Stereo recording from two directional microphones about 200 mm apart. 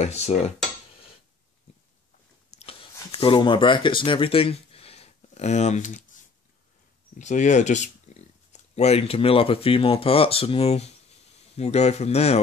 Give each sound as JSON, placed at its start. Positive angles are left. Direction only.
{"t": 0.0, "sound": "speech", "side_deg": 35}
{"t": 2.5, "sound": "a sound", "side_deg": 30}
{"t": 7.2, "sound": "speech", "side_deg": 35}